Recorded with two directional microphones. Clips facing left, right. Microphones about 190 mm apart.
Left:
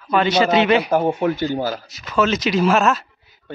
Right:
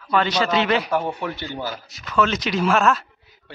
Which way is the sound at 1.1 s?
45° left (ahead or behind).